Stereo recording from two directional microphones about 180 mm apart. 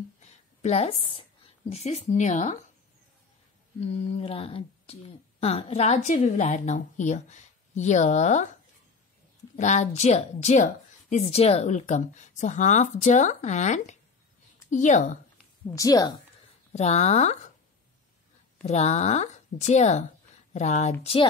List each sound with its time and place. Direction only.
0.2 s a sound: 40° left (ahead or behind)
1.7 s speech: 40° left (ahead or behind)
3.8 s speech: 35° left (ahead or behind)
9.6 s a woman's voice: 40° left (ahead or behind)
15.6 s a woman's voice: 20° left (ahead or behind)
16.7 s speech: 40° left (ahead or behind)
18.6 s speech: 40° left (ahead or behind)